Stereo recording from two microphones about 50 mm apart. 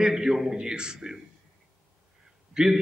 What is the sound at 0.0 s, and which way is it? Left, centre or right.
A man's voice, centre.